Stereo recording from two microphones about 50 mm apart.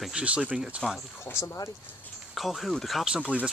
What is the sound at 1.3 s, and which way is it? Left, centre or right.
Speech, left.